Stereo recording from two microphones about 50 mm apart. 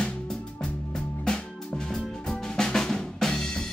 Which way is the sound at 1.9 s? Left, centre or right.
Centre.